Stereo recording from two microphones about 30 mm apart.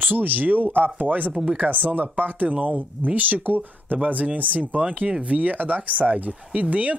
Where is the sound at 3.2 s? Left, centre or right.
Right.